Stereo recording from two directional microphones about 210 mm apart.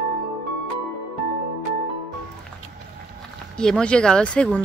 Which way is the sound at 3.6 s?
5° left (ahead or behind).